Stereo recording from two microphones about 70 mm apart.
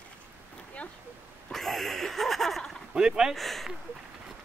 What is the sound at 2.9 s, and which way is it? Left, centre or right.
Speech, centre.